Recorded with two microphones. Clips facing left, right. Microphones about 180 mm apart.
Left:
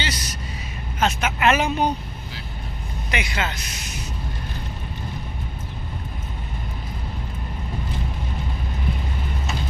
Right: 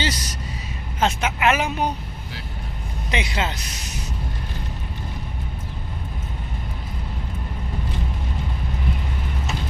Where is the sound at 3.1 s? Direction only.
30° right (ahead or behind).